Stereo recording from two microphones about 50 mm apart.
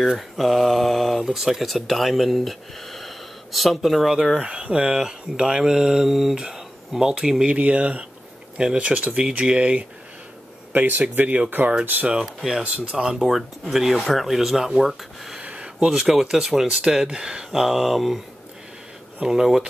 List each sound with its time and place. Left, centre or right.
0.4 s mantra: centre
1.2 s speech: centre
4.4 s speech: right
7.5 s speech: right
10.7 s speech: right
12.4 s speech: centre
14.0 s mantra: centre
14.8 s speech: centre
15.4 s a sound: centre
15.9 s speech: centre
17.5 s mantra: centre
19.2 s speech: centre